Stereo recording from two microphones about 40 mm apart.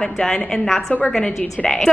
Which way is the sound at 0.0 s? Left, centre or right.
Centre.